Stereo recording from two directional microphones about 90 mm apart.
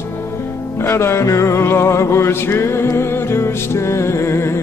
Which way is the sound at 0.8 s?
30° left (ahead or behind).